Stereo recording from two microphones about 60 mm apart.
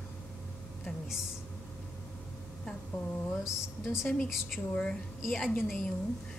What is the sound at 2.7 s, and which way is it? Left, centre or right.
Speech, centre.